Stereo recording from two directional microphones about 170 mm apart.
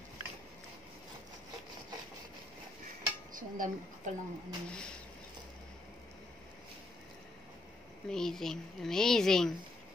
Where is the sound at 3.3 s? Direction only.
50° right (ahead or behind).